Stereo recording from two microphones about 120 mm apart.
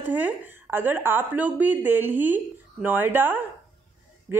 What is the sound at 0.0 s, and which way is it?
A woman's voice, 15° right (ahead or behind).